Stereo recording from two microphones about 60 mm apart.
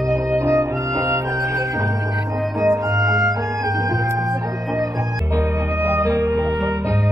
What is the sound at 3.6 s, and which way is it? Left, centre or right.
Music, right.